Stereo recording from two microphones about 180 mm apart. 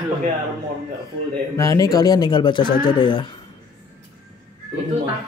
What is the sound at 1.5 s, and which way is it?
Speech, 20° left (ahead or behind).